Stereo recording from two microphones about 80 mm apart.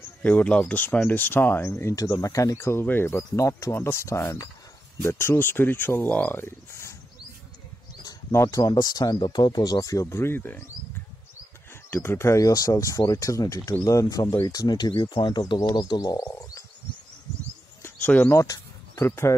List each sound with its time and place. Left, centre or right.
0.2 s speech: centre; by 7.0 s left
8.5 s speech: left
9.2 s speech: left
10.0 s speech: left
11.9 s speech: left
16.3 s frog: left
17.8 s a sound: left
18.3 s speech: left